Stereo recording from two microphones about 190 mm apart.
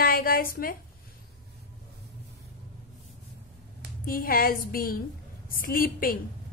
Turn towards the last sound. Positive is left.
turn(degrees=50)  # may be behind; listen again after turning